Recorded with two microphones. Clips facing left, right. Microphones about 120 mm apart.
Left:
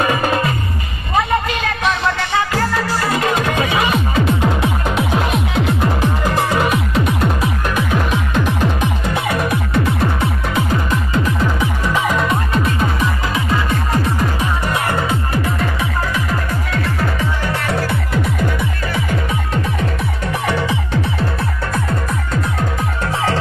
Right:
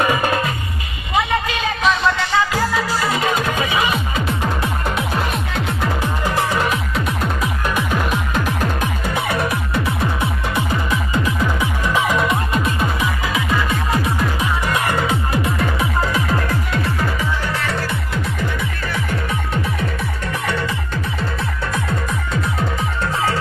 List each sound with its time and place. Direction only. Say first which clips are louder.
1.6 s music: right 1 dB; centre (ahead or behind)
14.7 s music: even; 25° left (ahead or behind)
15.0 s music: even; 15° right (ahead or behind)
19.0 s music: left 2 dB; 5° right (ahead or behind)
20.4 s music: left 4 dB; 15° left (ahead or behind)
21.7 s music: left 2 dB; centre (ahead or behind)